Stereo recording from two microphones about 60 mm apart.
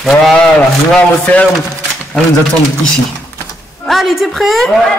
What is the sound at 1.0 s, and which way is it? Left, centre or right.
Speech, left.